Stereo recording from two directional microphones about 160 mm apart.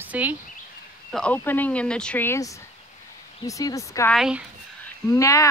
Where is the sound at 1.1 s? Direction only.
10° left (ahead or behind).